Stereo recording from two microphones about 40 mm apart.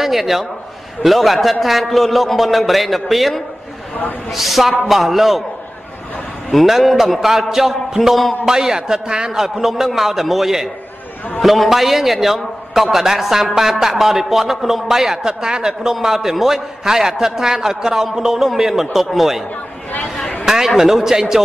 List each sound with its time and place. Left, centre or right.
0.0 s a man's voice: centre
6.5 s a man's voice: centre
9.4 s a man's voice: centre
20.4 s a man's voice: centre